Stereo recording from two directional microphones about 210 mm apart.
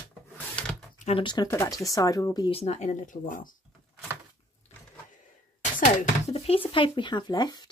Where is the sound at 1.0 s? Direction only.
25° left (ahead or behind).